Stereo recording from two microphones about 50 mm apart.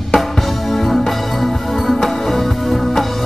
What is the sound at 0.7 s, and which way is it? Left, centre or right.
Music, centre.